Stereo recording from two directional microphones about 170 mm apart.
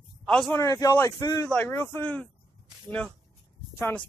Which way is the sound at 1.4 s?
10° left (ahead or behind).